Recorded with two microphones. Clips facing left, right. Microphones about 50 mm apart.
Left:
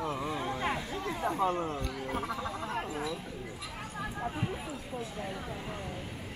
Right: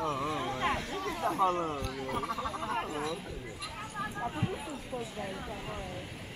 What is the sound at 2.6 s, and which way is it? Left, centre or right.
Speech, centre.